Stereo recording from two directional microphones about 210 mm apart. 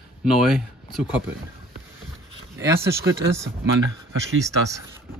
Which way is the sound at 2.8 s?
15° right (ahead or behind).